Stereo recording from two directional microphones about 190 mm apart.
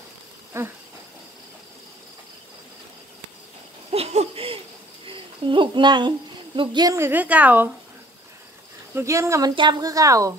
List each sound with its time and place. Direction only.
0.5 s speech: 15° right (ahead or behind)
3.9 s a sound: 35° right (ahead or behind)
5.0 s a child's voice: 25° right (ahead or behind); by 7.7 s 10° right (ahead or behind)
8.9 s speech: 15° right (ahead or behind)